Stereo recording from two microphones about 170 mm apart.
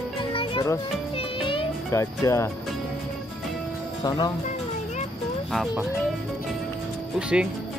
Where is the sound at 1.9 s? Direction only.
15° left (ahead or behind).